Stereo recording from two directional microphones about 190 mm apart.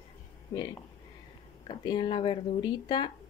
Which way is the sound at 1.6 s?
25° left (ahead or behind).